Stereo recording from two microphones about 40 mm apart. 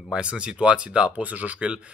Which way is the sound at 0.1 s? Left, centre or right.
Right.